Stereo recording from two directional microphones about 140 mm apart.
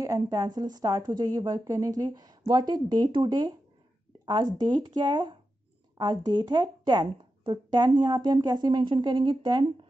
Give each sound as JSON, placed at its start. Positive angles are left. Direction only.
{"t": 0.0, "sound": "speech", "side_deg": -25}
{"t": 4.6, "sound": "speech", "side_deg": -30}